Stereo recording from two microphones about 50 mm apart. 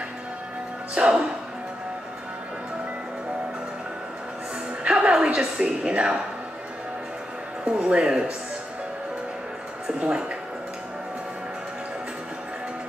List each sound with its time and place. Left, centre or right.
0.9 s a woman's voice: right
4.8 s music: right
5.4 s a woman's voice: right
7.6 s a woman's voice: right